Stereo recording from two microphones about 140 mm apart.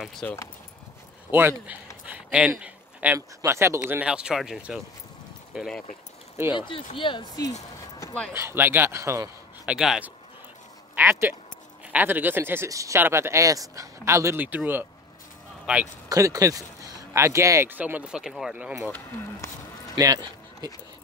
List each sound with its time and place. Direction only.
0.0 s speech: 10° left (ahead or behind)
1.3 s speech: 15° right (ahead or behind)
2.0 s a sound: 10° right (ahead or behind)
3.2 s speech: 20° right (ahead or behind); by 5.9 s centre (ahead or behind)
6.5 s speech: 35° left (ahead or behind)
8.3 s speech: 20° right (ahead or behind)
9.7 s a man's voice: 5° right (ahead or behind)
16.1 s speech: 25° right (ahead or behind)
18.9 s speech: 15° left (ahead or behind)
20.0 s speech: 25° right (ahead or behind)